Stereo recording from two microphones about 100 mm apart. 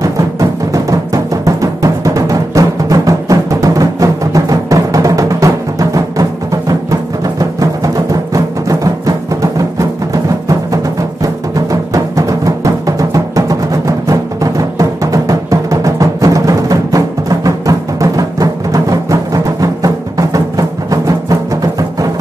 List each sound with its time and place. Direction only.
0.0 s music: 35° right (ahead or behind)